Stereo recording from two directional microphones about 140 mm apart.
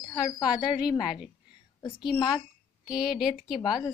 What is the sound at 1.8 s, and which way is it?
Speech, 35° left (ahead or behind).